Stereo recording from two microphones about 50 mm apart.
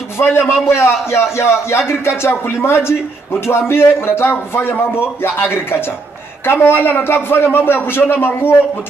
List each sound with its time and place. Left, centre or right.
0.2 s a man's voice: left